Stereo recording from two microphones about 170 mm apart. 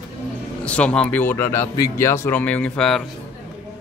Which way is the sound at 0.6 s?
5° left (ahead or behind).